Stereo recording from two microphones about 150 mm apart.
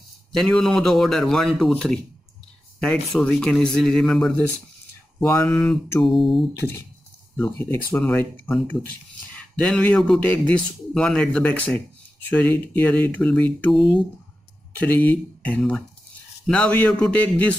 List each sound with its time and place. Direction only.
0.4 s speech: 5° left (ahead or behind)
5.2 s speech: 20° left (ahead or behind)
5.5 s speech: 5° left (ahead or behind)
6.6 s a man's voice: 20° left (ahead or behind)